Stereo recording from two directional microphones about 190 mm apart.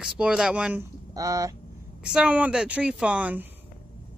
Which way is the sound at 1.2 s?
20° right (ahead or behind).